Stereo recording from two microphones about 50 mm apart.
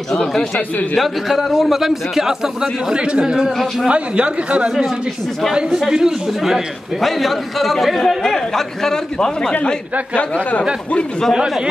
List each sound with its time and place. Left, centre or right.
0.1 s a man's voice: centre
0.9 s a man's voice: centre
3.4 s a man's voice: centre
3.9 s a man's voice: right
7.0 s a man's voice: centre
10.1 s speech: left